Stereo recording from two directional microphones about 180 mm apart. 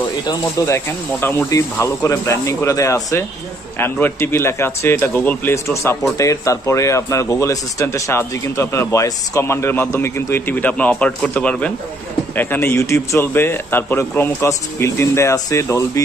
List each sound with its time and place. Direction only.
0.3 s speech: 15° left (ahead or behind)